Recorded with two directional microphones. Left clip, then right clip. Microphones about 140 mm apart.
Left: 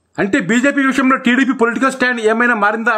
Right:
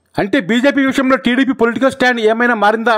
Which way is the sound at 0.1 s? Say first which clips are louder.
Even; 45° right (ahead or behind).